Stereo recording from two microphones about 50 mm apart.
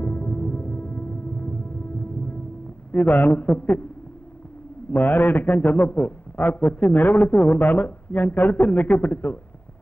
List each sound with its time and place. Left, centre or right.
0.0 s music: left
2.9 s a man's voice: left
4.9 s a man's voice: left